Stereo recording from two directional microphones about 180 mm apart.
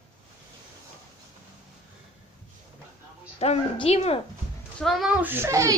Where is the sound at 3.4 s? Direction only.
35° left (ahead or behind).